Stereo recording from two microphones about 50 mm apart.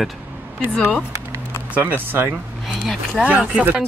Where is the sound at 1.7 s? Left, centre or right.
Right.